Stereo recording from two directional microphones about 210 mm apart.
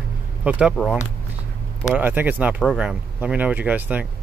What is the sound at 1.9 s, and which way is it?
Speech, 10° right (ahead or behind).